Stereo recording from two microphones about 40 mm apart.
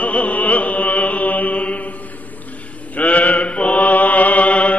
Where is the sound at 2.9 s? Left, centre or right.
Left.